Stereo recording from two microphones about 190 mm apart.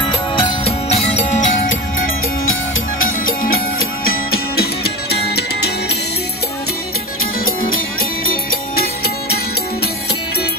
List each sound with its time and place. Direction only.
0.4 s music: 35° left (ahead or behind)
4.0 s music: 50° left (ahead or behind)
7.4 s music: 90° left